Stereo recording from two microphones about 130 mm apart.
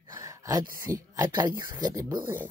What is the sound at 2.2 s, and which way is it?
Speech, 15° right (ahead or behind).